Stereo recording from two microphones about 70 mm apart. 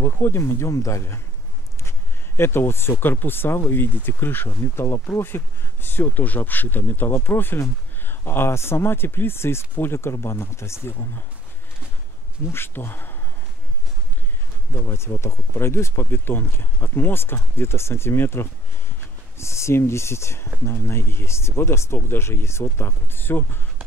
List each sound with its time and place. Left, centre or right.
0.0 s speech: left
12.4 s speech: left
14.7 s speech: left